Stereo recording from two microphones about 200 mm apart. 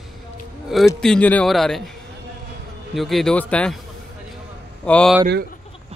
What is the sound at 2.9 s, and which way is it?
Speech, centre (ahead or behind).